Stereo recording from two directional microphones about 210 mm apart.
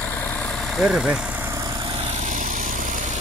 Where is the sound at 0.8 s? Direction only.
Centre (ahead or behind).